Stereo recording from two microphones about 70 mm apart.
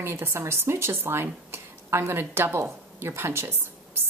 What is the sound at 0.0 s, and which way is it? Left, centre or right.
Speech, right.